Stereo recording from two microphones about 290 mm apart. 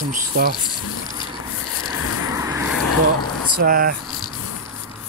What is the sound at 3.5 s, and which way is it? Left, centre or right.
Speech, right.